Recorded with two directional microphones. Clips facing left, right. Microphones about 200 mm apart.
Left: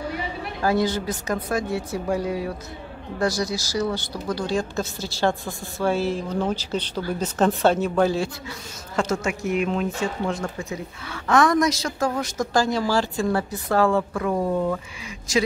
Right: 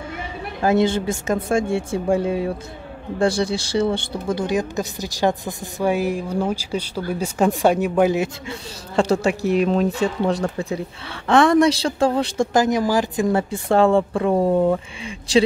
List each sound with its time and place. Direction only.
0.6 s a woman's voice: 25° right (ahead or behind)